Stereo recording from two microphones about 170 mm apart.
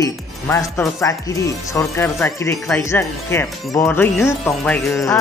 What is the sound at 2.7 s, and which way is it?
Music, 15° left (ahead or behind).